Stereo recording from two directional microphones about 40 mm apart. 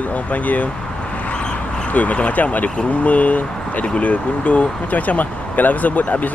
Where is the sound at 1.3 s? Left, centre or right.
Left.